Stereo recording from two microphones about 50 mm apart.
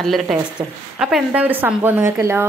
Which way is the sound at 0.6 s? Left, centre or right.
Centre.